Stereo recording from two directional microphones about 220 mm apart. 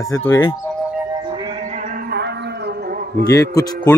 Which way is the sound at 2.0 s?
50° right (ahead or behind).